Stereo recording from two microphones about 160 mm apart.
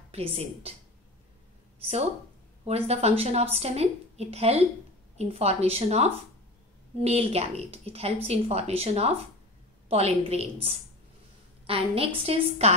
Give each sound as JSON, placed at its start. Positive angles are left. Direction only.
{"t": 0.1, "sound": "a woman's voice", "side_deg": -40}
{"t": 1.8, "sound": "a woman's voice", "side_deg": -40}